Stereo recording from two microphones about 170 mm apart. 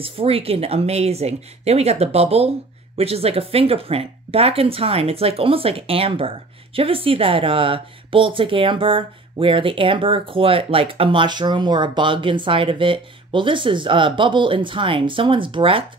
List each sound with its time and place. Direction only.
0.0 s speech: 35° right (ahead or behind)